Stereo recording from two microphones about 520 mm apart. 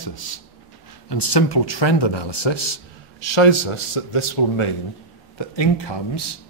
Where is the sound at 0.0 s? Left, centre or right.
Left.